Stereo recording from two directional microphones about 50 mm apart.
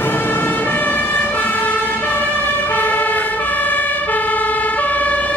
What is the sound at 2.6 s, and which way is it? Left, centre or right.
Emergency vehicle, left.